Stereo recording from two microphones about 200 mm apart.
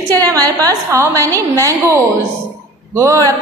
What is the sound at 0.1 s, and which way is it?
A woman's voice, 20° right (ahead or behind).